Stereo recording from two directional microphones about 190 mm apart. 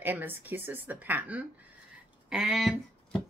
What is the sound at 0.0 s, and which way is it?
Speech, 10° right (ahead or behind).